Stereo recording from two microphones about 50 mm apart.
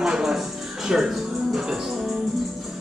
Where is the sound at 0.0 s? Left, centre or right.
Centre.